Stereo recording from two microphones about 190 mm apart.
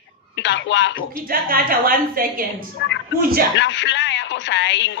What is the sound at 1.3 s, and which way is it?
A woman's voice, 50° right (ahead or behind).